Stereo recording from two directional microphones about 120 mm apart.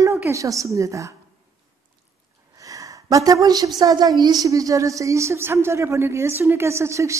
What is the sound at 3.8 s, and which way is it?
A woman's voice, 30° right (ahead or behind).